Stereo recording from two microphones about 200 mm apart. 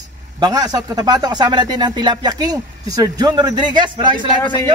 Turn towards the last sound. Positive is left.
turn(degrees=-20)  # may be behind; listen again after turning